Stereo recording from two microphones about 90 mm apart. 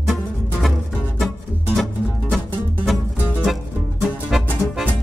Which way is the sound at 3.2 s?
30° left (ahead or behind).